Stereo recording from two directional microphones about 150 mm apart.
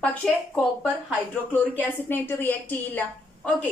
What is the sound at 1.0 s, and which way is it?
A woman's voice, 10° left (ahead or behind).